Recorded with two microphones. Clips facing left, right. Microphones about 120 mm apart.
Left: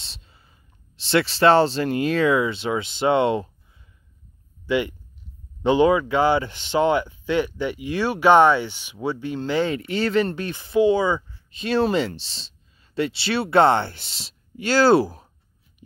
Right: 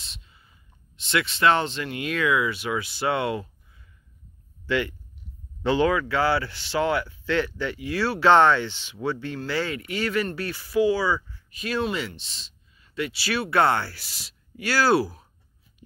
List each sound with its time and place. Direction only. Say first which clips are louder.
0.0 s sigh: left 1 dB; 35° left (ahead or behind)
0.9 s speech: left 6 dB; 30° left (ahead or behind)
4.6 s speech: left 3 dB; 15° left (ahead or behind)